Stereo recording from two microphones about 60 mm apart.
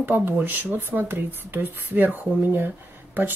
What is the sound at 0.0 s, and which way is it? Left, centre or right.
Speech, right.